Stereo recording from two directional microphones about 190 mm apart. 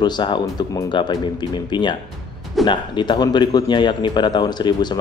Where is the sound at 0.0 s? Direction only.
25° left (ahead or behind).